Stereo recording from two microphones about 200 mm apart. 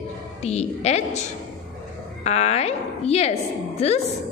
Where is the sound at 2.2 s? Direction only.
35° left (ahead or behind).